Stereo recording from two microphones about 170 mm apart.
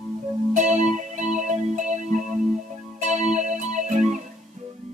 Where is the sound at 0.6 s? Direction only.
45° right (ahead or behind).